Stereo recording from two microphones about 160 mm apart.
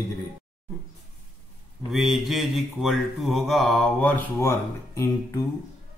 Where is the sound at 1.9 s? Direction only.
Centre (ahead or behind); by 5.5 s 20° left (ahead or behind).